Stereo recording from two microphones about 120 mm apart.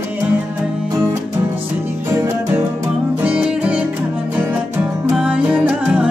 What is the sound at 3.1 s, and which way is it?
Music, 10° right (ahead or behind).